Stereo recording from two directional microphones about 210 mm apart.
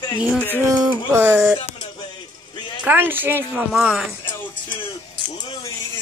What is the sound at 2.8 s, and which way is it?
A woman's voice, 10° right (ahead or behind).